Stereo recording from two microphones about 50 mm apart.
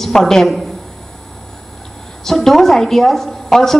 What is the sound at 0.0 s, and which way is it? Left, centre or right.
Speech, centre.